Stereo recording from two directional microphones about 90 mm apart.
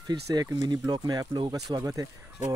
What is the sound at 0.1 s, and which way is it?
Speech, 45° right (ahead or behind).